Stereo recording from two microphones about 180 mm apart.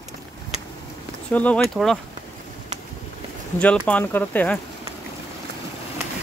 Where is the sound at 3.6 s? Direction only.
5° left (ahead or behind).